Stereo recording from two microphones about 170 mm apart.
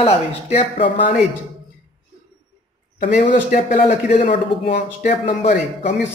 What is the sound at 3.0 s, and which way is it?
A man's voice, 40° left (ahead or behind).